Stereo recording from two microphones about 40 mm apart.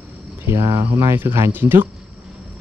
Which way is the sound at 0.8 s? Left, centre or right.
Right.